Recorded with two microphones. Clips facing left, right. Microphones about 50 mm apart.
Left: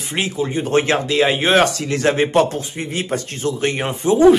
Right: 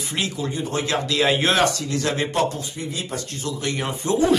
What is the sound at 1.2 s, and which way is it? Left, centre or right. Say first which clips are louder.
Speech: even; centre.